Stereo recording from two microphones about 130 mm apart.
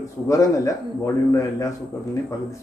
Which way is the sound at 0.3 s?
25° left (ahead or behind).